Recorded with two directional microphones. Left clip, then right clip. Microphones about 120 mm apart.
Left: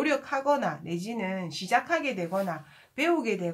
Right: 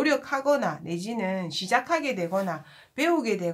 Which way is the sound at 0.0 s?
25° right (ahead or behind).